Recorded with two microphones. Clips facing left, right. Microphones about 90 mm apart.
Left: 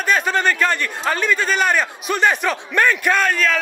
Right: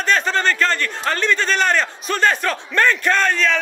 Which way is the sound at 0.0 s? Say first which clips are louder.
Even; 10° left (ahead or behind).